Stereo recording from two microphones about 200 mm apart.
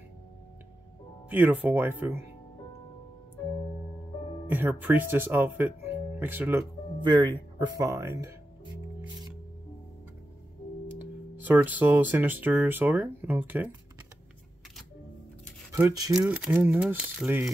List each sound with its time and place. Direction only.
1.3 s speech: 10° right (ahead or behind)
4.5 s speech: 10° right (ahead or behind)
7.0 s speech: 25° right (ahead or behind)
11.4 s speech: 10° right (ahead or behind)
15.7 s speech: 15° right (ahead or behind)
16.3 s speech: 5° right (ahead or behind)